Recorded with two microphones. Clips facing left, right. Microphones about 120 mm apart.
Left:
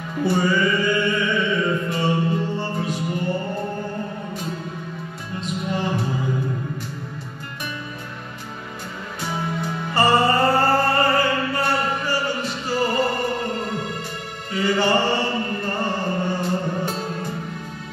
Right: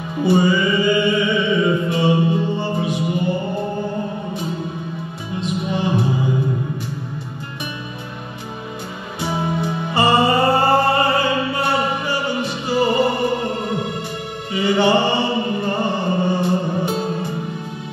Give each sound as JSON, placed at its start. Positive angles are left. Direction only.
{"t": 0.2, "sound": "music", "side_deg": -15}
{"t": 5.6, "sound": "music", "side_deg": -15}
{"t": 9.2, "sound": "music", "side_deg": -15}